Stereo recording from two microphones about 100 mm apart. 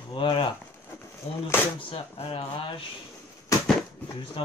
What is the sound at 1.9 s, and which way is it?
Speech, 70° left (ahead or behind).